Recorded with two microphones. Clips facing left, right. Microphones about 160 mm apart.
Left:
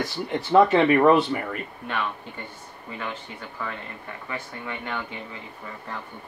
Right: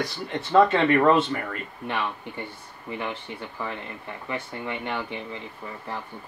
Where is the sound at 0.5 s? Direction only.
15° left (ahead or behind).